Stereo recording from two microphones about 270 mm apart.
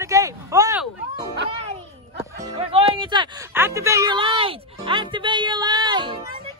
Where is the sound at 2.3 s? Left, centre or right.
Centre.